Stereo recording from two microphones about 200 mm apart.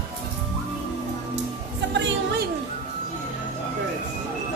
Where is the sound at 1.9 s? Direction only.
65° right (ahead or behind).